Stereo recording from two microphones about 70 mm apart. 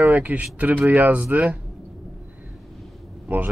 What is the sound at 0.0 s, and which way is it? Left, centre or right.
Speech, right.